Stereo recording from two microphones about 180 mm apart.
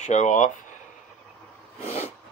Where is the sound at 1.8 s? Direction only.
35° left (ahead or behind).